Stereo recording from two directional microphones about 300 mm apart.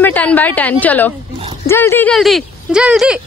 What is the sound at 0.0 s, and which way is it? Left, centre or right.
A woman's voice, centre.